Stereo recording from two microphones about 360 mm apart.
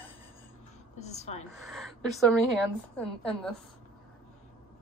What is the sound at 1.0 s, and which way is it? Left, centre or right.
Speech, centre.